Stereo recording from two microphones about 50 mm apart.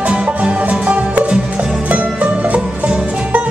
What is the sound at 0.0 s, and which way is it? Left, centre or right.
Music, right.